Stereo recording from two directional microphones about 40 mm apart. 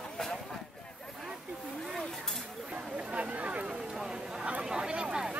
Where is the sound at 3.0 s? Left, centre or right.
Right.